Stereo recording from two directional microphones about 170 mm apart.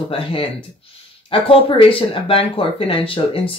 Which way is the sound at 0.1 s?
35° left (ahead or behind).